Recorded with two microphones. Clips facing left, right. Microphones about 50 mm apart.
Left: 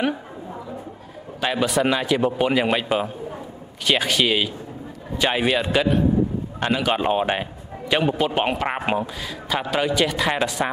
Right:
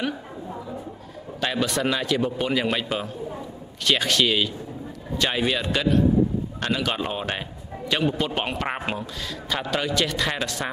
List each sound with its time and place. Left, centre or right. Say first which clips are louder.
1.4 s a man's voice: left 4 dB; centre
8.5 s a man's voice: left 3 dB; centre
8.8 s a man's voice: left 6 dB; centre